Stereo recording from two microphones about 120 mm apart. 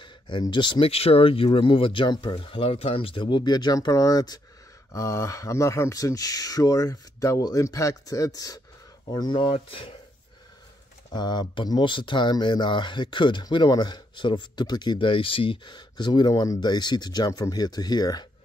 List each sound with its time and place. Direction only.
0.0 s speech: 40° left (ahead or behind)
11.1 s speech: 35° left (ahead or behind)